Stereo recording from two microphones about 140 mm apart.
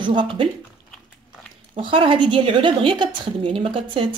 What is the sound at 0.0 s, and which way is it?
Speech, 35° right (ahead or behind).